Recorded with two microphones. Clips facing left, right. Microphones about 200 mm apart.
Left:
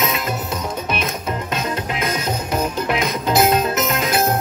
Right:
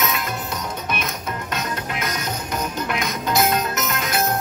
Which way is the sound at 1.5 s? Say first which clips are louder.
Left 2 dB; 25° left (ahead or behind).